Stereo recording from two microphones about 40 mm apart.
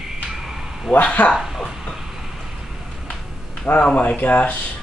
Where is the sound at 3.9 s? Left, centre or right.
Left.